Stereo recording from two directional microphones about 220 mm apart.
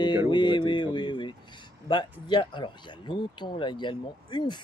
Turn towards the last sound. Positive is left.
turn(degrees=20)  # may be behind; listen again after turning